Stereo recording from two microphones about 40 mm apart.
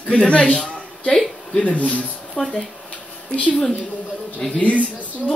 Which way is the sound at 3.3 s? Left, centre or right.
Left.